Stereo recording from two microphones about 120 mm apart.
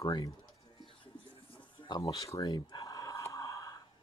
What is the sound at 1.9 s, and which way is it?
Speech, 35° left (ahead or behind).